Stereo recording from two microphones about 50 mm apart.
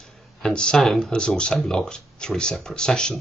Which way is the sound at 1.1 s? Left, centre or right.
Centre.